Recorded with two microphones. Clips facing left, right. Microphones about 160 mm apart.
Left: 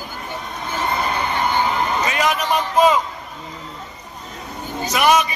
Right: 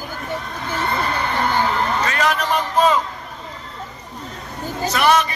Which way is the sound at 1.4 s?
10° left (ahead or behind).